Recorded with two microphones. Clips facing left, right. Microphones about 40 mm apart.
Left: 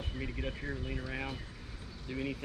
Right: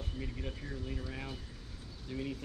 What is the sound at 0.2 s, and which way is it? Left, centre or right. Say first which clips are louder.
Speech: left 5 dB; left.